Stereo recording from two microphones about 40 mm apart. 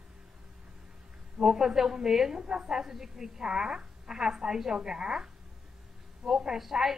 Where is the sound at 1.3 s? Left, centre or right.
Centre.